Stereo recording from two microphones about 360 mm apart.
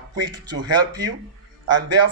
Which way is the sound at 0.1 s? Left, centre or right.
Right.